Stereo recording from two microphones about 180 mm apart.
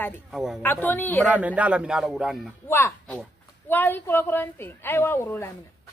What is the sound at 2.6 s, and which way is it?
A woman's voice, 15° left (ahead or behind).